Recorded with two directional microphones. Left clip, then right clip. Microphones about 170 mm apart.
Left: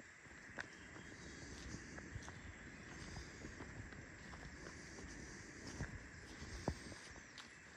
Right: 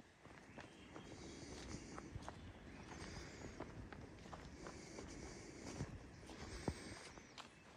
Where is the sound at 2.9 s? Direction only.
10° left (ahead or behind).